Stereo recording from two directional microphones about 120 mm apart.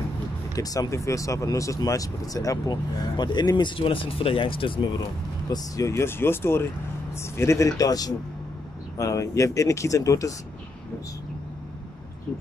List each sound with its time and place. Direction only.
0.6 s speech: 30° left (ahead or behind); by 4.9 s 45° left (ahead or behind)
5.5 s speech: 25° left (ahead or behind)